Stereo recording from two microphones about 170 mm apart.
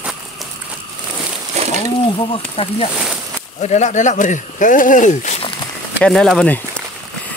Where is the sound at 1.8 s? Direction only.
30° left (ahead or behind).